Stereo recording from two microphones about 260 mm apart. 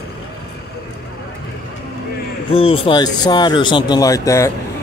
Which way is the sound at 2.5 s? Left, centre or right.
Left.